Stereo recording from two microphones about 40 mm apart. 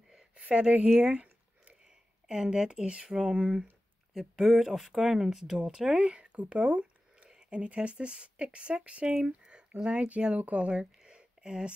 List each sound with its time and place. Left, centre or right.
0.3 s speech: right
1.1 s a sound: right
1.9 s speech: centre
4.1 s speech: centre
5.9 s a sound: right
7.3 s speech: right
9.0 s speech: centre